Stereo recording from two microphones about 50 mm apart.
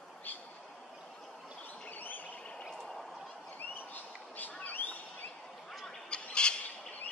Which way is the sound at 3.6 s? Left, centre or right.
Left.